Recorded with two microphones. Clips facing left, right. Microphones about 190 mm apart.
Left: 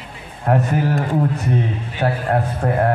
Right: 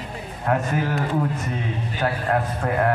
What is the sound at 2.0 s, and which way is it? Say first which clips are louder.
Speech: left 4 dB; 35° left (ahead or behind).